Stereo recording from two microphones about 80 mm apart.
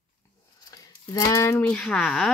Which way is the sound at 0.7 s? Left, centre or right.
Left.